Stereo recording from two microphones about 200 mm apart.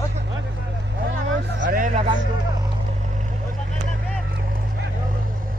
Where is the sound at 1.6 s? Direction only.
40° right (ahead or behind).